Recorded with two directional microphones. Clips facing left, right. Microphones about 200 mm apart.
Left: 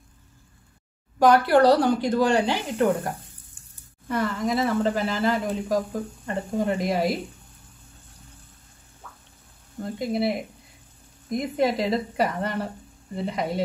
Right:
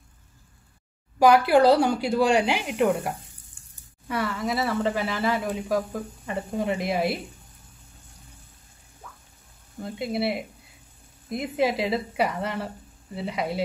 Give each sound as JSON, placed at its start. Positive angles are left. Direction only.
{"t": 1.2, "sound": "speech", "side_deg": -10}
{"t": 3.6, "sound": "a sound", "side_deg": -10}
{"t": 4.1, "sound": "speech", "side_deg": -5}
{"t": 9.8, "sound": "speech", "side_deg": -5}